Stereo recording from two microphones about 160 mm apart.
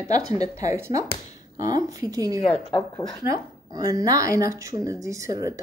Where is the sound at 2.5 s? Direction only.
30° left (ahead or behind).